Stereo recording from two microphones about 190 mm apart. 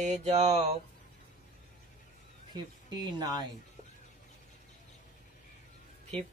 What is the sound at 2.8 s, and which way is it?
Speech, 25° right (ahead or behind).